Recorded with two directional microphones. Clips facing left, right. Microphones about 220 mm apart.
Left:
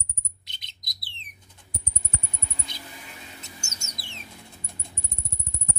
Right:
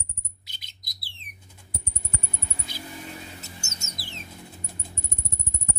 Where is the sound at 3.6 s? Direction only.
20° right (ahead or behind).